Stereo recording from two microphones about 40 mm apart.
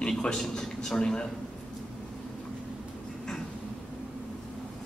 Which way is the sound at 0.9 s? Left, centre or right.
Left.